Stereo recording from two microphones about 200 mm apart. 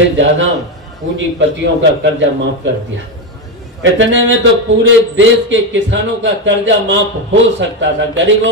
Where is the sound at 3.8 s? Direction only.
65° right (ahead or behind).